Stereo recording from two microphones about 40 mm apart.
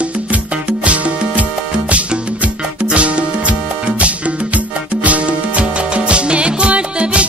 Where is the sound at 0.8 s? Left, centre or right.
Right.